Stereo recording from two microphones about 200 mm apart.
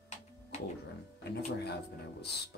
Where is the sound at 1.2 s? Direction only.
55° left (ahead or behind).